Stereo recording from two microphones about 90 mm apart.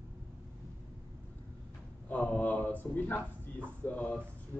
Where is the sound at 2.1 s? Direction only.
15° left (ahead or behind).